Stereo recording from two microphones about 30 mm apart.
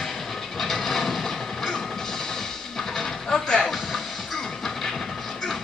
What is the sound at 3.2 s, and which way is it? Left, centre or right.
Music, left.